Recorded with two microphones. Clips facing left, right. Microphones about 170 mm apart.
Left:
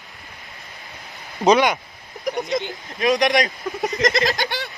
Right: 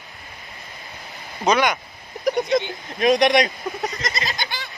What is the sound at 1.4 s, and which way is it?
Speech, 25° left (ahead or behind).